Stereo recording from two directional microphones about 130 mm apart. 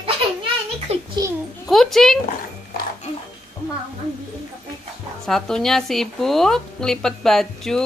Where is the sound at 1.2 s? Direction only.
25° right (ahead or behind).